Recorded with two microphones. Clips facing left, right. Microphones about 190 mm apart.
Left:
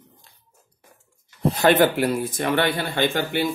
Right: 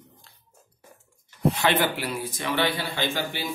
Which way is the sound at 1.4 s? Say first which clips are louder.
Left 6 dB; 40° left (ahead or behind).